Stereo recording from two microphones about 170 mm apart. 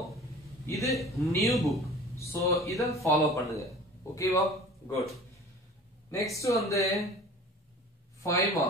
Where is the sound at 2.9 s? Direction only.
15° left (ahead or behind).